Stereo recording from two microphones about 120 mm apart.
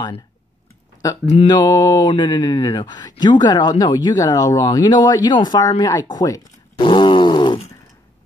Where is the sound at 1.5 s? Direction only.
35° left (ahead or behind).